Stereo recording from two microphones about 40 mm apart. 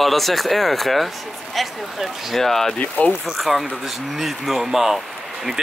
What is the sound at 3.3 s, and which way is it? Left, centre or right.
Speech, centre.